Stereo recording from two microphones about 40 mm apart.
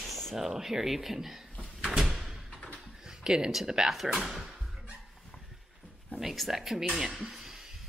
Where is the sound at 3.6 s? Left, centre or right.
Centre.